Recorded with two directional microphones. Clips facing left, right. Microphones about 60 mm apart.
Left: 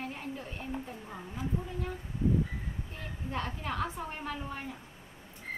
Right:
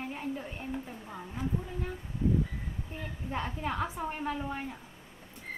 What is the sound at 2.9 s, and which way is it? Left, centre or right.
A woman's voice, centre.